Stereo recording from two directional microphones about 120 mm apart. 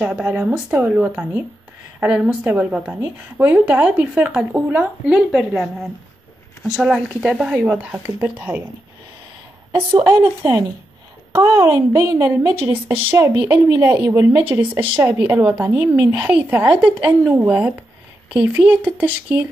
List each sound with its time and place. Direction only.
0.0 s a woman's voice: 10° right (ahead or behind)
5.3 s a woman's voice: centre (ahead or behind)
9.9 s a woman's voice: 20° right (ahead or behind)